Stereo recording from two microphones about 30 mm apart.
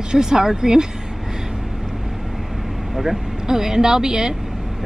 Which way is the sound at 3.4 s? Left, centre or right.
Centre.